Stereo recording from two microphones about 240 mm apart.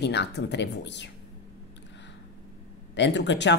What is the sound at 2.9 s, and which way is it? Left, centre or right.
Speech, left.